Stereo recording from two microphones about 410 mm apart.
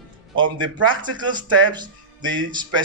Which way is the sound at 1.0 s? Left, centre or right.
Centre.